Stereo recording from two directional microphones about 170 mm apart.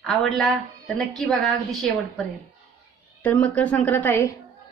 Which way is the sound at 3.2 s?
10° left (ahead or behind).